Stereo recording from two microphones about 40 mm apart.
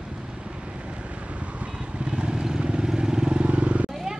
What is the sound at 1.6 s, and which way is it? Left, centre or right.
Vehicle, right.